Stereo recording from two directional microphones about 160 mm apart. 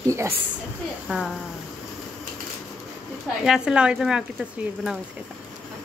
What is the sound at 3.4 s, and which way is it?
Speech, 5° right (ahead or behind).